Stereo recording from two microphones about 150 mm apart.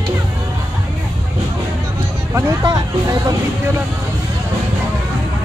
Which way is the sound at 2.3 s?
25° right (ahead or behind).